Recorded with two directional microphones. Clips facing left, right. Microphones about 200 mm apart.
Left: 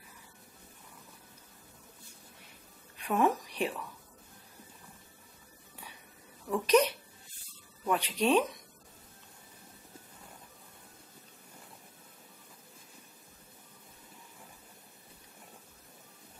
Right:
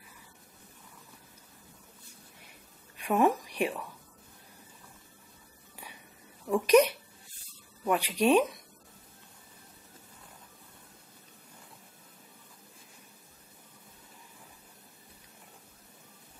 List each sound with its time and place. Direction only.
3.1 s a woman's voice: 10° right (ahead or behind)
6.5 s speech: 10° right (ahead or behind)